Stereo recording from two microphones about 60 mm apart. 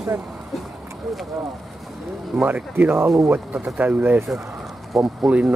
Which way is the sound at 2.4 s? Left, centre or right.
Right.